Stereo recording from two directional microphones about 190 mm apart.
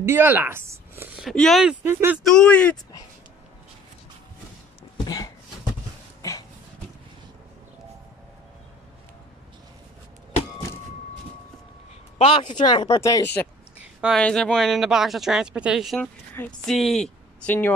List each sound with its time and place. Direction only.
0.0 s speech: 10° right (ahead or behind)
2.2 s speech: 5° left (ahead or behind)
4.9 s a sound: 20° left (ahead or behind)
12.2 s speech: 35° left (ahead or behind); by 13.5 s 15° left (ahead or behind)
13.7 s a sound: 5° right (ahead or behind)
14.2 s a woman's voice: 5° left (ahead or behind)